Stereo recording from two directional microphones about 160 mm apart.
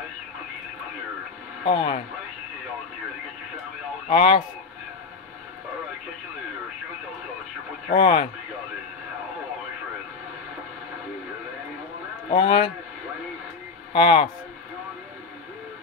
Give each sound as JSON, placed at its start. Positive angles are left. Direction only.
{"t": 1.6, "sound": "speech", "side_deg": 30}
{"t": 4.1, "sound": "a man's voice", "side_deg": 30}
{"t": 7.9, "sound": "a man's voice", "side_deg": 30}
{"t": 12.3, "sound": "a man's voice", "side_deg": 30}
{"t": 13.9, "sound": "a man's voice", "side_deg": 30}